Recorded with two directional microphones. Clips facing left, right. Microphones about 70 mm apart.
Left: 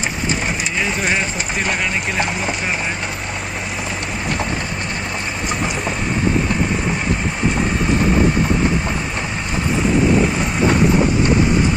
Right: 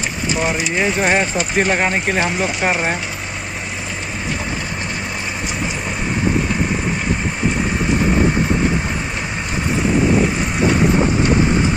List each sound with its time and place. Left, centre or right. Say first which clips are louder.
1.0 s speech: right 3 dB; right